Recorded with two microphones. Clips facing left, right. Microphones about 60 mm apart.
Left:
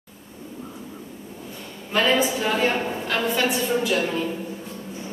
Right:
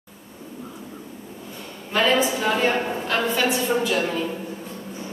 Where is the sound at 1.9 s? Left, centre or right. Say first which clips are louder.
Right 1 dB; centre.